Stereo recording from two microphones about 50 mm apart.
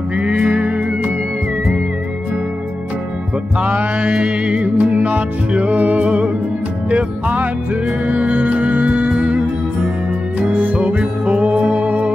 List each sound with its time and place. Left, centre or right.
0.1 s music: right
3.5 s music: right
10.6 s music: right